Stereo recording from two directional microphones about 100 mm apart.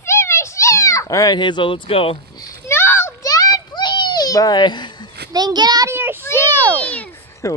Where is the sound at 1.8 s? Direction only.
70° left (ahead or behind).